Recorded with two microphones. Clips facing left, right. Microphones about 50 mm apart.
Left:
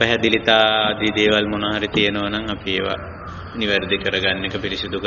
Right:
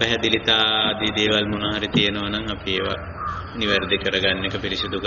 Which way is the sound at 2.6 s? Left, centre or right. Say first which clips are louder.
Left 1 dB; left.